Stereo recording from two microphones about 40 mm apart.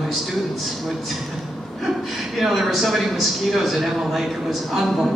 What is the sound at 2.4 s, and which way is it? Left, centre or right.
A man's voice, centre.